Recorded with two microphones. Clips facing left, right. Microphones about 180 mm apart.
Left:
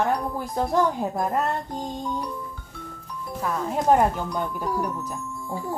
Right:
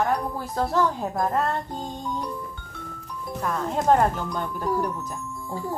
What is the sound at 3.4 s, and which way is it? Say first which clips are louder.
Speech: even; 5° left (ahead or behind).